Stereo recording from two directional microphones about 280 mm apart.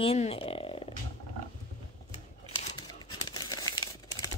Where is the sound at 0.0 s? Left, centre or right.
Left.